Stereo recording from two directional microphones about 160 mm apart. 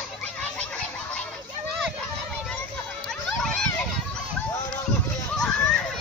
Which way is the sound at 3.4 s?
Centre (ahead or behind).